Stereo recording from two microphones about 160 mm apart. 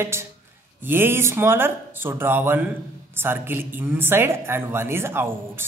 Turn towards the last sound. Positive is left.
turn(degrees=-15)  # may be behind; listen again after turning